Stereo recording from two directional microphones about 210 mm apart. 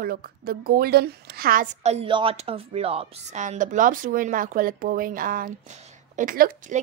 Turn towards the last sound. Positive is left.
turn(degrees=-40)  # may be behind; listen again after turning